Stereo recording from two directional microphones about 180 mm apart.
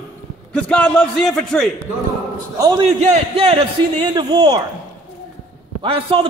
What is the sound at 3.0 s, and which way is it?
A man's voice, 35° right (ahead or behind).